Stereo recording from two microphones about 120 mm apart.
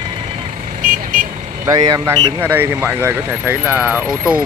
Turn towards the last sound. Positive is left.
turn(degrees=-15)  # may be behind; listen again after turning